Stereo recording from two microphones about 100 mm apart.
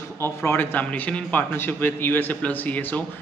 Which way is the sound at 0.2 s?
25° left (ahead or behind).